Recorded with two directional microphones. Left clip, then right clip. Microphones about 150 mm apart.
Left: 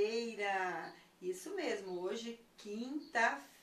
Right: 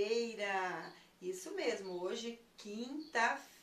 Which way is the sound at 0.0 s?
15° right (ahead or behind).